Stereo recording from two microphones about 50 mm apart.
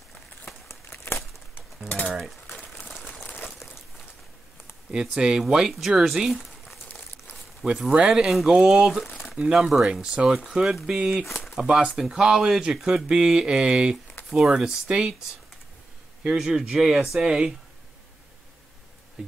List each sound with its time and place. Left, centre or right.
0.7 s crumpling: left
5.0 s speech: centre
7.6 s speech: centre
8.2 s speech: centre
11.2 s a sound: centre
11.5 s speech: centre
14.9 s speech: right
16.3 s speech: centre
19.2 s insect: right